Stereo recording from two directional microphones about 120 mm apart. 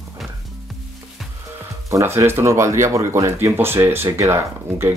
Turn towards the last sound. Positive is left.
turn(degrees=-20)  # may be behind; listen again after turning